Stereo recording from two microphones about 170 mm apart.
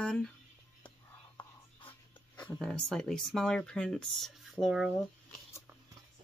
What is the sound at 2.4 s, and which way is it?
Speech, 5° left (ahead or behind).